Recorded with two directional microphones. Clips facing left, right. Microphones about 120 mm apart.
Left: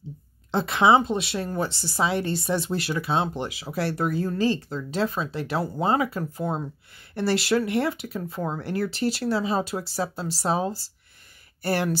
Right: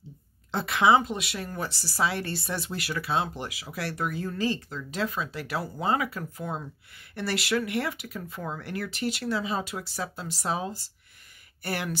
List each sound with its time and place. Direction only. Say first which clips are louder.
0.5 s speech: left 3 dB; 25° left (ahead or behind)